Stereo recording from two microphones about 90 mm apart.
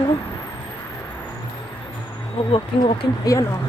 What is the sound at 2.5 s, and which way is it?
Speech, 75° left (ahead or behind).